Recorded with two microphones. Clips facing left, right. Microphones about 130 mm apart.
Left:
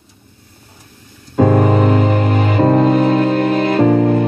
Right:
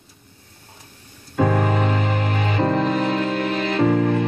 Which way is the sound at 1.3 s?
40° left (ahead or behind).